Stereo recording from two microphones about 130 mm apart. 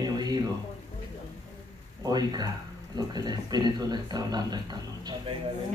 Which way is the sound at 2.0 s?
30° right (ahead or behind).